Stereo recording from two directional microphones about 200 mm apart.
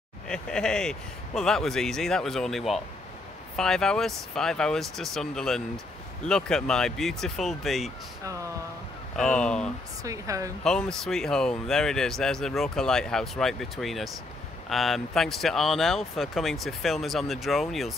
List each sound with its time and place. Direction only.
0.3 s speech: 5° left (ahead or behind)
9.1 s speech: 5° left (ahead or behind)
10.0 s speech: 15° right (ahead or behind)
10.6 s speech: 5° left (ahead or behind)